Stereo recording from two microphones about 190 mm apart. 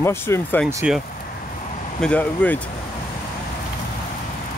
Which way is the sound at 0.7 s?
5° right (ahead or behind).